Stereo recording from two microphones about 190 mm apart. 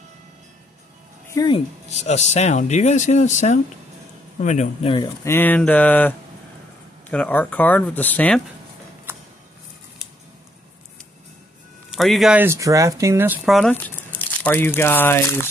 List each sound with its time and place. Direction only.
1.3 s speech: 20° left (ahead or behind)
2.0 s speech: 35° left (ahead or behind)
4.9 s speech: 20° left (ahead or behind)
11.9 s speech: centre (ahead or behind)
13.5 s speech: centre (ahead or behind)